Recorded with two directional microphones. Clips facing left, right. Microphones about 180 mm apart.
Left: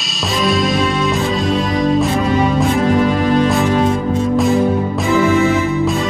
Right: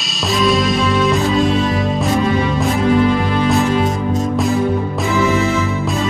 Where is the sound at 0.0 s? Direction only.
Centre (ahead or behind).